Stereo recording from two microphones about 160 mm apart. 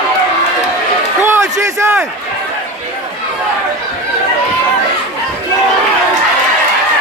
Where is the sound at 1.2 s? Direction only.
15° right (ahead or behind).